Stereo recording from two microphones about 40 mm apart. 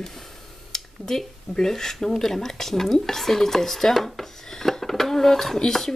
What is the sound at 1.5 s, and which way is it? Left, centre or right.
Speech, centre.